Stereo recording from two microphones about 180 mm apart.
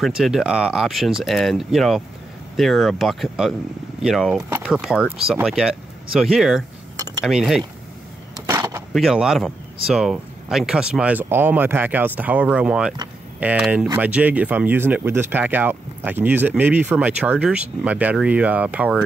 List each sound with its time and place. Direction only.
0.0 s speech: centre (ahead or behind)
8.5 s skateboard: 15° right (ahead or behind)
8.9 s speech: centre (ahead or behind)